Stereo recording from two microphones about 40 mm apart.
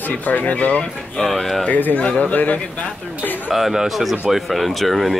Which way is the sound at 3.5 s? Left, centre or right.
Centre.